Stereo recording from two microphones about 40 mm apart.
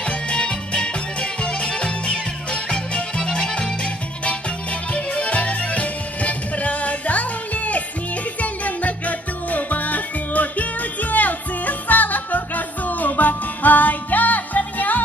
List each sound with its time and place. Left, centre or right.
0.0 s music: left